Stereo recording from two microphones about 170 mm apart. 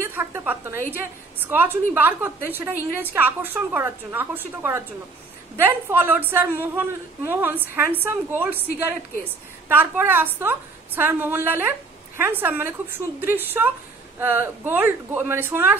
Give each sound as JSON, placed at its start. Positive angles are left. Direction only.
{"t": 0.0, "sound": "a woman's voice", "side_deg": -15}
{"t": 9.7, "sound": "a woman's voice", "side_deg": -10}